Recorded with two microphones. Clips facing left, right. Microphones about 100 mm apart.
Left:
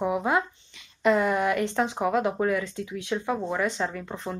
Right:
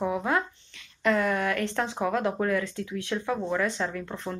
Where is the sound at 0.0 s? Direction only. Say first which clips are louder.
Left 2 dB; 10° left (ahead or behind).